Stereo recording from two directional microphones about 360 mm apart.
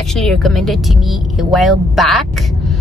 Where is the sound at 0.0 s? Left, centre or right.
Centre.